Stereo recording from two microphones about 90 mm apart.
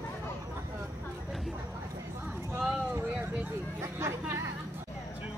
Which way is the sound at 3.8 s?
30° right (ahead or behind).